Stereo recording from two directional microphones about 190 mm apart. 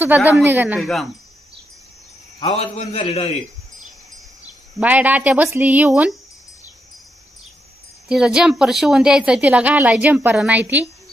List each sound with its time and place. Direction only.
0.0 s a woman's voice: 10° right (ahead or behind)
2.4 s a man's voice: 30° left (ahead or behind)
4.7 s a woman's voice: 10° right (ahead or behind)
8.1 s a woman's voice: 5° right (ahead or behind)